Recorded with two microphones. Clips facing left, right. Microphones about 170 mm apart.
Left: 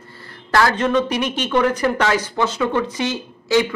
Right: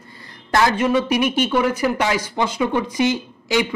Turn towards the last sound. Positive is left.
turn(degrees=-15)  # may be behind; listen again after turning